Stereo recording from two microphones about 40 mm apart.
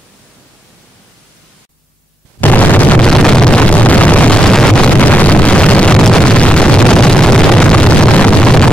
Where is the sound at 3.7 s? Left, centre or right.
Left.